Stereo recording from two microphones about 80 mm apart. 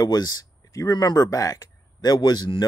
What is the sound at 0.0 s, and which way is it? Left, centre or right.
Speech, left.